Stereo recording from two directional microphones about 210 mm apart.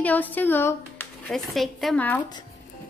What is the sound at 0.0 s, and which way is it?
Speech, 10° left (ahead or behind).